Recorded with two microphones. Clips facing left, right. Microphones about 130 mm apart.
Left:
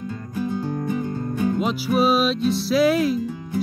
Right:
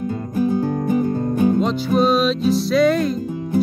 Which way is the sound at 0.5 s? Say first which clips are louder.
Right 5 dB; 45° right (ahead or behind).